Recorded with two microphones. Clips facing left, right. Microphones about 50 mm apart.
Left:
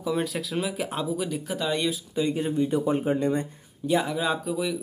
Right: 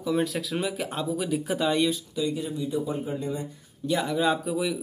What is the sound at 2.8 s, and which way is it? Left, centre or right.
Speech, left.